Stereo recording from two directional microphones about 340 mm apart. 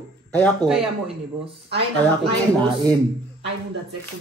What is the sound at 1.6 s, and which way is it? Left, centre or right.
Speech, right.